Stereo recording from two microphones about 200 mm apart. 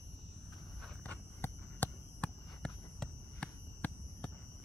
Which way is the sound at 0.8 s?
5° left (ahead or behind).